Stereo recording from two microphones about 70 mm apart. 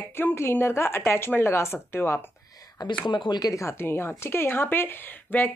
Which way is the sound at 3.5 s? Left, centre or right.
Left.